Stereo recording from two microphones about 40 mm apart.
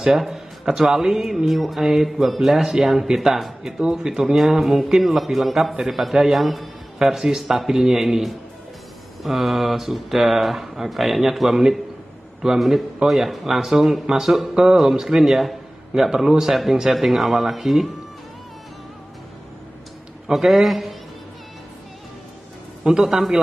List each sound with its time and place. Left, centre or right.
0.1 s speech: centre
20.3 s speech: centre
22.8 s speech: centre